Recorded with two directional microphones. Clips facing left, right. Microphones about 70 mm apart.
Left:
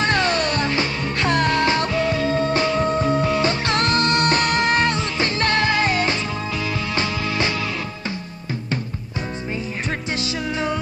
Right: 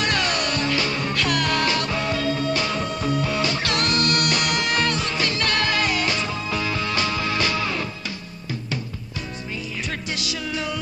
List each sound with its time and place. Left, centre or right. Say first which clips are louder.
0.0 s music: left 4 dB; left
10.1 s music: left 4 dB; left